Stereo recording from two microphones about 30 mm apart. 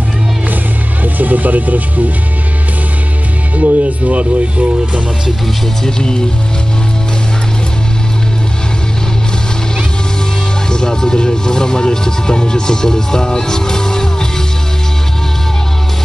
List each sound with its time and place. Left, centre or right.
1.0 s speech: right
3.5 s speech: right
5.9 s speech: left
10.7 s speech: left